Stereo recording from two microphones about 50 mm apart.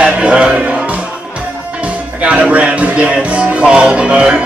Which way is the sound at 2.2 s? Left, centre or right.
Right.